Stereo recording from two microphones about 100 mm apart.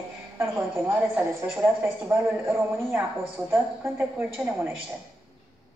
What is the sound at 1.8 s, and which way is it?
A woman's voice, 20° right (ahead or behind).